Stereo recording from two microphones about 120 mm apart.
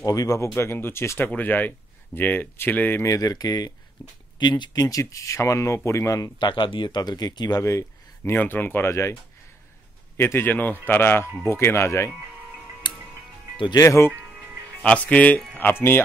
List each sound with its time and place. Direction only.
0.0 s speech: 30° left (ahead or behind)
6.4 s speech: 40° left (ahead or behind); by 9.1 s 20° left (ahead or behind)
10.1 s a man's voice: 20° left (ahead or behind)
13.7 s speech: 25° left (ahead or behind)
14.8 s a man's voice: 10° left (ahead or behind)